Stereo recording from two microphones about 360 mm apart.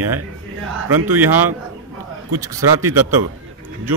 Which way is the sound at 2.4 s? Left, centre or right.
Centre.